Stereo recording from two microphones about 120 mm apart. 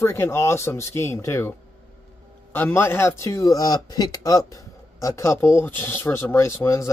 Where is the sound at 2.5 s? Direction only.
20° left (ahead or behind).